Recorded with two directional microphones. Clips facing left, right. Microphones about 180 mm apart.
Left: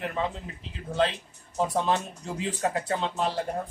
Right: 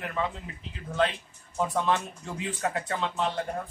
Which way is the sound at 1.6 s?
30° left (ahead or behind).